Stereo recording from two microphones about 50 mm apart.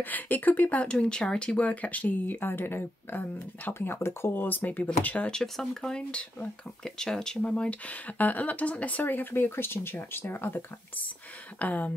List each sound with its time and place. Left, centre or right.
0.0 s speech: left
0.9 s speech: centre; by 4.8 s left
4.8 s speech: left
5.3 s speech: centre
8.2 s speech: left
11.6 s speech: left